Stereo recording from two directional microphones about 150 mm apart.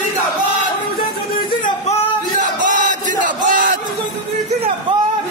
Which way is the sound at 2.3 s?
60° right (ahead or behind).